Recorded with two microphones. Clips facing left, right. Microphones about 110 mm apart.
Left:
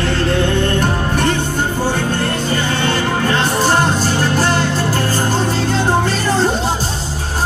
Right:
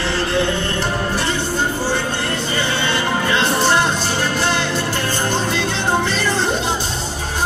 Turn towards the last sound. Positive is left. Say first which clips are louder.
# left 3 dB
turn(degrees=40)  # may be behind; listen again after turning